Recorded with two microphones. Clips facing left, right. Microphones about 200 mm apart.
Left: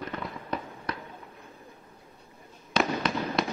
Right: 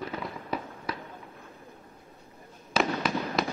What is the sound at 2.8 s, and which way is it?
Fireworks, 5° right (ahead or behind).